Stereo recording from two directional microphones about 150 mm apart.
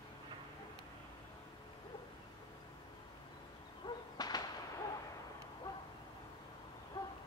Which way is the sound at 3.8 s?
25° left (ahead or behind).